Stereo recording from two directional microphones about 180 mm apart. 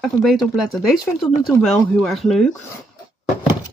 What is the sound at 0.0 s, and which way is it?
Speech, centre (ahead or behind).